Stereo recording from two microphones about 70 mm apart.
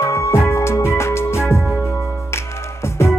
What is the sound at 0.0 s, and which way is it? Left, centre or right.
Music, left.